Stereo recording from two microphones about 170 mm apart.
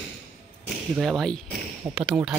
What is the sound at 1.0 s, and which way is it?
A man's voice, centre (ahead or behind).